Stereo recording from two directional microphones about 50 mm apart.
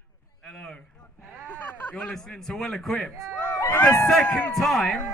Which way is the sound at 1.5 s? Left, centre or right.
Left.